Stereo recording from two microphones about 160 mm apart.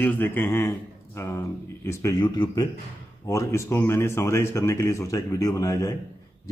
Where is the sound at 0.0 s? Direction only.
10° left (ahead or behind).